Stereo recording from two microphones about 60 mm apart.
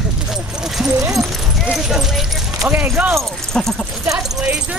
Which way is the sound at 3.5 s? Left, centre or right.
Centre.